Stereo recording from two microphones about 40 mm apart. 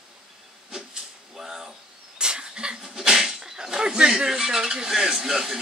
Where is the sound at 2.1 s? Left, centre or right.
Right.